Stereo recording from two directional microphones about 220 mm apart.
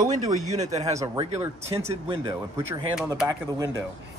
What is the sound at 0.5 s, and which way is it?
Speech, 30° right (ahead or behind).